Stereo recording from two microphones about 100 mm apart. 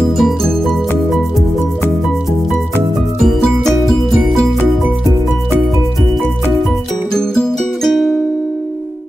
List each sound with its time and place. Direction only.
0.2 s music: 5° left (ahead or behind)
3.3 s music: centre (ahead or behind)
7.2 s music: 5° left (ahead or behind)